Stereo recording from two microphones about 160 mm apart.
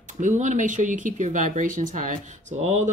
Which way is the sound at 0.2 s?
50° right (ahead or behind).